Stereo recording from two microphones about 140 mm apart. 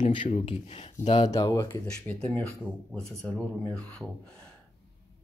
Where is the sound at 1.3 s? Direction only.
20° left (ahead or behind).